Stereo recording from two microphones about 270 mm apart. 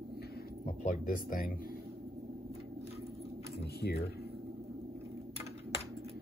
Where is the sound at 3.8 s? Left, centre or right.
Left.